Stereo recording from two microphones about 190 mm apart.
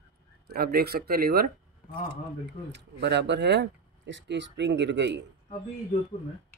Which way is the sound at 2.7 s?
65° right (ahead or behind).